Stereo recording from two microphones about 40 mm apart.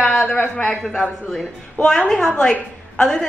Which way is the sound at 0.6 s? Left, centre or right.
Centre.